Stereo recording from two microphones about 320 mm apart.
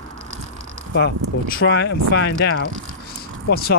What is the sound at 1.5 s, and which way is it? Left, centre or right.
Speech, left.